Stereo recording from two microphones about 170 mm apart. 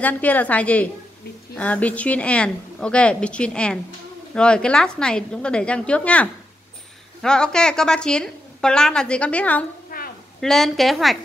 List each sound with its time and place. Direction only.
0.0 s a woman's voice: 10° left (ahead or behind)
9.8 s a sound: 60° left (ahead or behind)
10.4 s a woman's voice: centre (ahead or behind)